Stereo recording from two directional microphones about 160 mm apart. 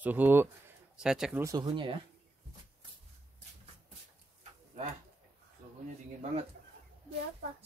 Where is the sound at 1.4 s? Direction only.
25° right (ahead or behind).